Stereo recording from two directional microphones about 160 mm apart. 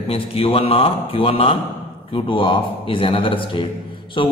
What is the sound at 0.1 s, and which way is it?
A man's voice, 35° left (ahead or behind).